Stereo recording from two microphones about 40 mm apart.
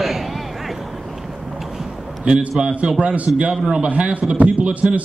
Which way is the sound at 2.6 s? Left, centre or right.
Right.